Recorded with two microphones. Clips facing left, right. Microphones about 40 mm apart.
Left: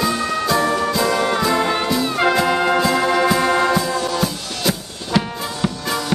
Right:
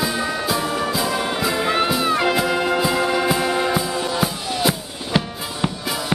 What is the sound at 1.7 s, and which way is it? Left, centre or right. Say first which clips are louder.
Music: right 1 dB; right.